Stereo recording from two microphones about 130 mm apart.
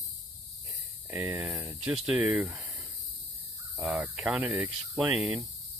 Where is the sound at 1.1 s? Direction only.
20° right (ahead or behind).